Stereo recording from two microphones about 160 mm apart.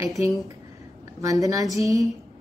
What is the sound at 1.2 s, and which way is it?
Speech, 20° right (ahead or behind).